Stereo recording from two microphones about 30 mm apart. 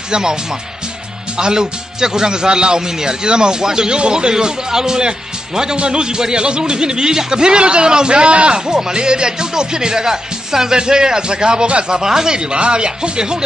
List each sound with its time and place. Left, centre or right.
0.1 s speech: right
8.5 s speech: right
12.0 s speech: centre
12.5 s speech: right